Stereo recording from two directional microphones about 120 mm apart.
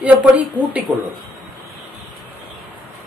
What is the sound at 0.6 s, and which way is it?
Speech, 40° right (ahead or behind).